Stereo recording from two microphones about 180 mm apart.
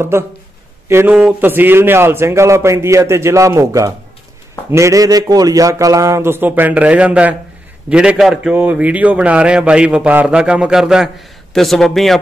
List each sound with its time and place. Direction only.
0.1 s a man's voice: 15° right (ahead or behind); by 12.2 s centre (ahead or behind)